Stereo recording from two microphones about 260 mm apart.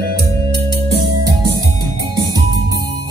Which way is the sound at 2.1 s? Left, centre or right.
Centre.